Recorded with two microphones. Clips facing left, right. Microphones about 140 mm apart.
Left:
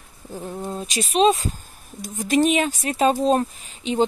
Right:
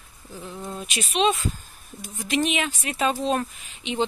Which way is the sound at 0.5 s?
35° left (ahead or behind).